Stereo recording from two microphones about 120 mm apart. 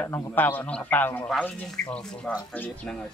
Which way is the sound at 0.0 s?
20° left (ahead or behind).